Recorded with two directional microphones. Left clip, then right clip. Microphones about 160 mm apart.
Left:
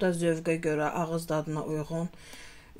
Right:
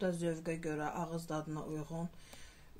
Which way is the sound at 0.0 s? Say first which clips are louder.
Left 10 dB; 50° left (ahead or behind).